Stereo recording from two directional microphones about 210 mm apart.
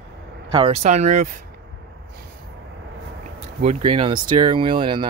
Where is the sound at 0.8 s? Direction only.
35° right (ahead or behind).